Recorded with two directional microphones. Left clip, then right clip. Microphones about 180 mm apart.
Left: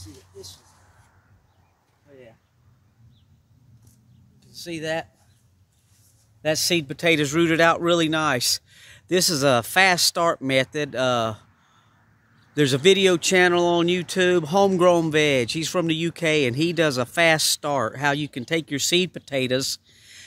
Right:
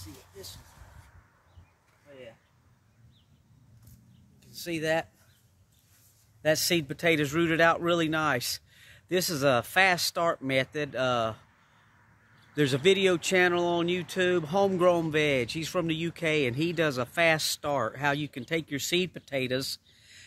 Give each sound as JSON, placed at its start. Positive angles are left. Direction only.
{"t": 4.5, "sound": "speech", "side_deg": 10}
{"t": 6.4, "sound": "speech", "side_deg": 40}
{"t": 12.5, "sound": "speech", "side_deg": 60}